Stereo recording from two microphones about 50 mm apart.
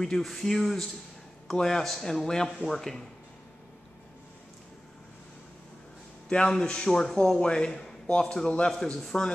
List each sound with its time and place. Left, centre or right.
0.0 s a man's voice: centre
6.2 s a man's voice: centre